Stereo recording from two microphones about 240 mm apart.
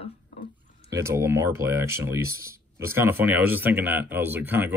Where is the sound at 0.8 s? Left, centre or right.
Centre.